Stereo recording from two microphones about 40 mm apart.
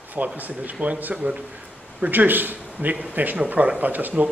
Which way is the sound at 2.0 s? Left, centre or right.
Right.